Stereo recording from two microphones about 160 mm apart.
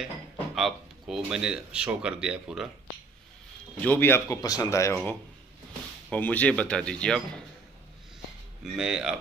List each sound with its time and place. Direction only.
0.6 s speech: centre (ahead or behind)
3.8 s speech: 10° left (ahead or behind)
8.7 s speech: 5° right (ahead or behind)